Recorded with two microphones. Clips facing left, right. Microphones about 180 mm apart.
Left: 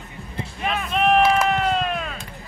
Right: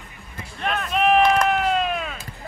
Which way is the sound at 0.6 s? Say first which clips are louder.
Even; centre (ahead or behind).